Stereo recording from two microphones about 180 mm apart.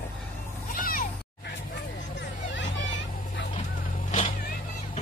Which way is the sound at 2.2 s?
85° left.